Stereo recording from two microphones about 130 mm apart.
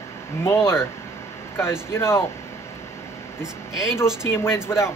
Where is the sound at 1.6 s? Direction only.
20° left (ahead or behind).